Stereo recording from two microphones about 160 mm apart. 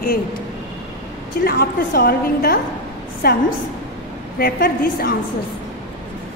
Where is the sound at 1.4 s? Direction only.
75° left (ahead or behind).